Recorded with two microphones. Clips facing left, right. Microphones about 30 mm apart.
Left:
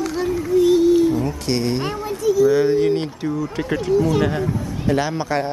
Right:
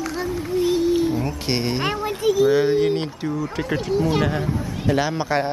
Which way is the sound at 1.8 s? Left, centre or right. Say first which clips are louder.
Even; right.